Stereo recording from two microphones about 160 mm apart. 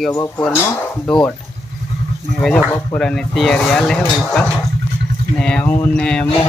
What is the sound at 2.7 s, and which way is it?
Speech, 10° left (ahead or behind).